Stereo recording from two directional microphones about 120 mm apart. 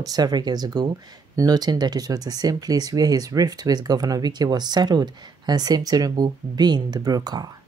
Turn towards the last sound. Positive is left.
turn(degrees=-35)  # may be behind; listen again after turning